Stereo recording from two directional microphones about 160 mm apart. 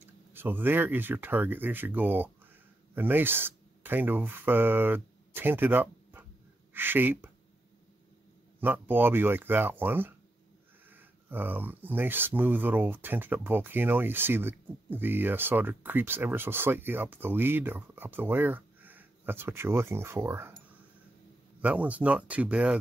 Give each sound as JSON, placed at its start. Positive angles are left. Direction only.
{"t": 0.0, "sound": "speech", "side_deg": -15}
{"t": 8.5, "sound": "speech", "side_deg": -10}
{"t": 21.5, "sound": "speech", "side_deg": -10}